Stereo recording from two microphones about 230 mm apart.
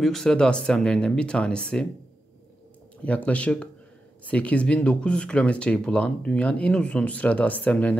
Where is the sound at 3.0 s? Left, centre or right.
Centre.